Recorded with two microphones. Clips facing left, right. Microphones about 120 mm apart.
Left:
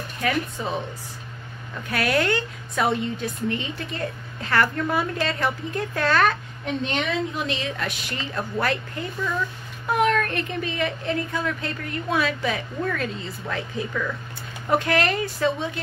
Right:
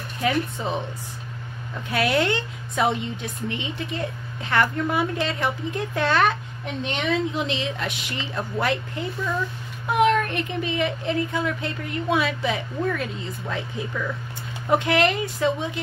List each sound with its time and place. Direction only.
0.2 s a woman's voice: 20° right (ahead or behind)
1.9 s a woman's voice: 20° right (ahead or behind)